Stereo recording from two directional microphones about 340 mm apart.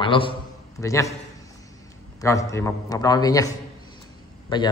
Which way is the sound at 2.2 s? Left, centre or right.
Centre.